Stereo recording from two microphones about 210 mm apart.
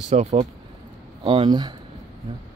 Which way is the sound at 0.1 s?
30° right (ahead or behind).